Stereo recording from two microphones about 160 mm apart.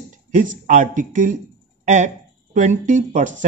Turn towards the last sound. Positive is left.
turn(degrees=-50)  # may be behind; listen again after turning